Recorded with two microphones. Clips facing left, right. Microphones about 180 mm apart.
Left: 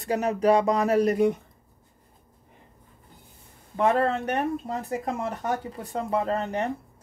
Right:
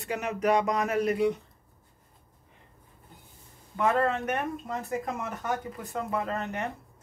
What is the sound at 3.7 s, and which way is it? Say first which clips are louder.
Speech: left 3 dB; 30° left (ahead or behind).